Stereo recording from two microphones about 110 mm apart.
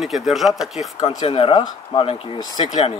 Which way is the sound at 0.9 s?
65° left (ahead or behind).